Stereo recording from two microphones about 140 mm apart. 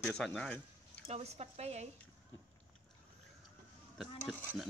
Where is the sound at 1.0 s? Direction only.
50° right (ahead or behind).